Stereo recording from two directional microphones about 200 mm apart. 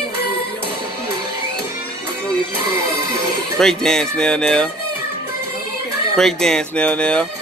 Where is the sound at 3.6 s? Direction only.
5° left (ahead or behind).